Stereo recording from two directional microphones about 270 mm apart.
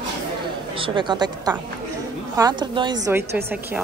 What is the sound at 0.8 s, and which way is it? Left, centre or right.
A woman's voice, centre.